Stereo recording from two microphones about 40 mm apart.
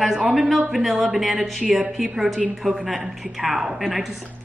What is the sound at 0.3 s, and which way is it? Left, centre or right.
A man's voice, centre.